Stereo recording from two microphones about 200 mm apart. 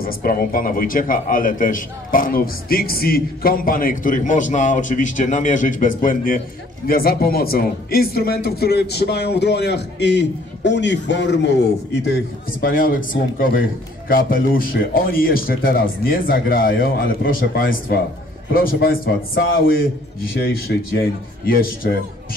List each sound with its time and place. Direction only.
0.0 s a man's voice: 45° left (ahead or behind)
12.5 s a man's voice: 45° left (ahead or behind)